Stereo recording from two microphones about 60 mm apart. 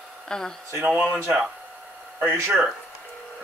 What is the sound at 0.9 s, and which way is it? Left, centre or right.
Speech, centre.